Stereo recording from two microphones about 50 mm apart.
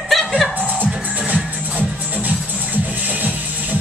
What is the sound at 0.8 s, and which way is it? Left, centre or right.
Music, right.